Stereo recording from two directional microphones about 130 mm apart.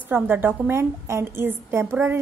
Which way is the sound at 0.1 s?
15° right (ahead or behind).